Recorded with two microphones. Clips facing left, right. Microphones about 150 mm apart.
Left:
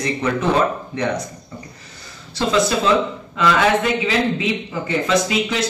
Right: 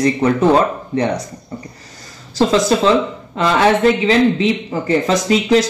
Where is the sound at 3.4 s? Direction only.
35° right (ahead or behind).